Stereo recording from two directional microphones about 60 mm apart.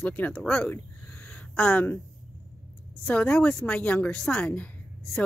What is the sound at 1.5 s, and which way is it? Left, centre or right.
Speech, centre.